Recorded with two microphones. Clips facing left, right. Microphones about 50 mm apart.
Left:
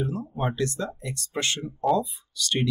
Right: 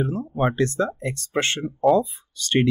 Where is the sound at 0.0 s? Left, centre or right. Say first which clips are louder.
Right 4 dB; right.